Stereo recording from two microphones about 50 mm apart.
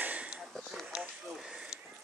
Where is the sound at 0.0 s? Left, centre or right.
Right.